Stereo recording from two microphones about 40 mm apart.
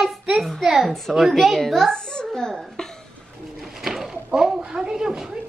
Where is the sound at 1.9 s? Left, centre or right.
Centre.